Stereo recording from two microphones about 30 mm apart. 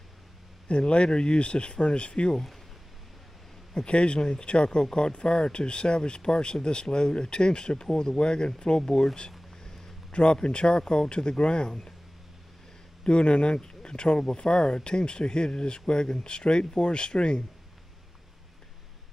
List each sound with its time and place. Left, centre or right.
0.7 s speech: left
3.7 s speech: left
10.1 s speech: left
13.0 s speech: left